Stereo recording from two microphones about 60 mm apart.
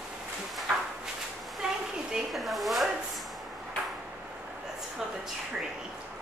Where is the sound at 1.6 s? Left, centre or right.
Centre.